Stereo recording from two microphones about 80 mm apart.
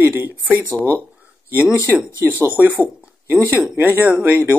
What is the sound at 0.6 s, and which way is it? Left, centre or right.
Speech, left.